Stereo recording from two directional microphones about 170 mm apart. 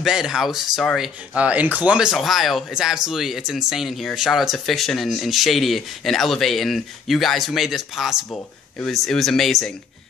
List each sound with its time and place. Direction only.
0.0 s speech: 5° right (ahead or behind)